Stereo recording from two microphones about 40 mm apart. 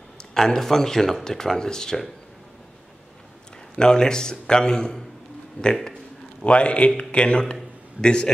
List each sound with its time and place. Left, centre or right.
0.3 s speech: centre
3.7 s a man's voice: centre
5.6 s a man's voice: left